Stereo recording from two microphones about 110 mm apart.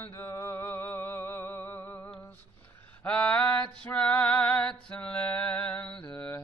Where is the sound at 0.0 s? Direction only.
25° left (ahead or behind).